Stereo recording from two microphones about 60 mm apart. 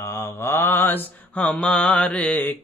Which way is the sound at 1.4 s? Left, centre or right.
Centre.